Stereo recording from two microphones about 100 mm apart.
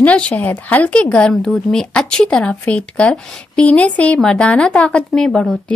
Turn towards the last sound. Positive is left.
turn(degrees=5)  # may be behind; listen again after turning